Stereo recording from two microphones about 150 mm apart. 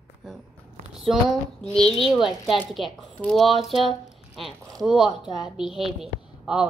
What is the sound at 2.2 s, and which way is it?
A woman's voice, centre (ahead or behind).